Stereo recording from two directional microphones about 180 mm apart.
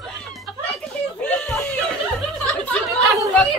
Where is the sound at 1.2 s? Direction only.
5° left (ahead or behind).